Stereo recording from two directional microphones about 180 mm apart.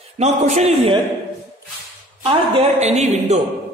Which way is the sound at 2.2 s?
35° right (ahead or behind).